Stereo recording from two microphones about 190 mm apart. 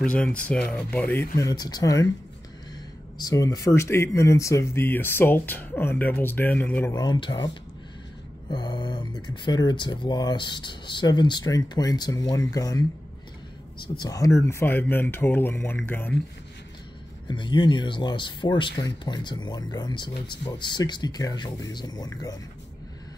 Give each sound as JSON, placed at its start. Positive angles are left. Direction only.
{"t": 0.0, "sound": "speech", "side_deg": 5}
{"t": 3.2, "sound": "speech", "side_deg": 20}
{"t": 6.9, "sound": "speech", "side_deg": 20}
{"t": 13.9, "sound": "speech", "side_deg": 20}
{"t": 17.3, "sound": "speech", "side_deg": 25}